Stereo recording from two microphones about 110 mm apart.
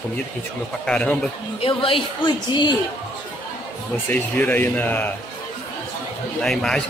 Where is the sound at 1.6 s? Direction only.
55° left (ahead or behind).